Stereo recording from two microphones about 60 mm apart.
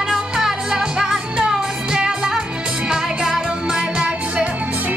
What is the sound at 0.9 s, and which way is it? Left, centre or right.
Music, centre.